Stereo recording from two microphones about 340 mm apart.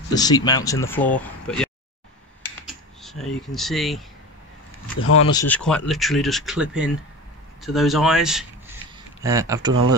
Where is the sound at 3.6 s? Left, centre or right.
Centre.